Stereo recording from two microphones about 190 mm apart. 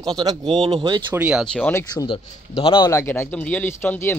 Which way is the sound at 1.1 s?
10° right (ahead or behind).